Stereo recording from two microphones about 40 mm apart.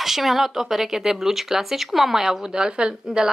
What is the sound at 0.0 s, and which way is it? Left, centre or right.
A woman's voice, centre.